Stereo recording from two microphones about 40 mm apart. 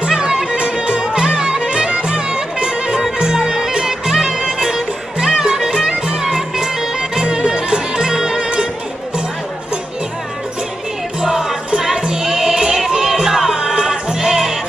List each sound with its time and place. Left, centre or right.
0.0 s music: right
11.1 s music: centre